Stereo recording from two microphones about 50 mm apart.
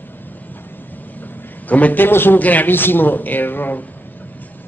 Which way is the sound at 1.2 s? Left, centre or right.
Left.